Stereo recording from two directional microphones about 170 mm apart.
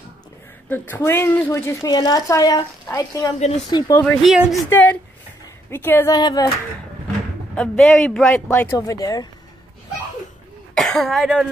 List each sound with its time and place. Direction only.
0.7 s a woman's voice: 10° left (ahead or behind)
3.3 s speech: 40° left (ahead or behind)
3.9 s a man's voice: 5° left (ahead or behind)
4.6 s a woman's voice: 10° left (ahead or behind)
6.1 s speech: 25° left (ahead or behind)
7.5 s a man's voice: 5° left (ahead or behind)
8.5 s speech: 15° left (ahead or behind)
10.7 s speech: centre (ahead or behind)